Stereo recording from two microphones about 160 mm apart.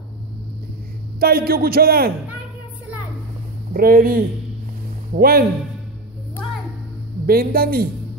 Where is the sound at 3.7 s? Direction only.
65° right (ahead or behind).